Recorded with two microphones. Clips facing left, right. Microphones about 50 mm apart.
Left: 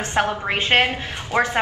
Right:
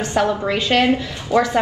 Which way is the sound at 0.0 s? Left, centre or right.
Left.